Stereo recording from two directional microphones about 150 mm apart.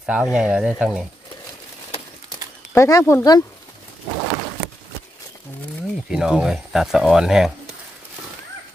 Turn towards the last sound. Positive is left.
turn(degrees=-5)  # may be behind; listen again after turning